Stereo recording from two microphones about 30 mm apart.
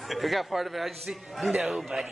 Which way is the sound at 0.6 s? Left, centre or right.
Centre.